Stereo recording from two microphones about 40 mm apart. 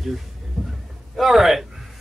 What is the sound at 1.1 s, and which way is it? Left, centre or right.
Music, centre.